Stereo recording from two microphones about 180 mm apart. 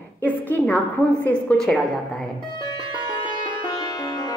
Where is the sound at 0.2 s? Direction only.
10° left (ahead or behind).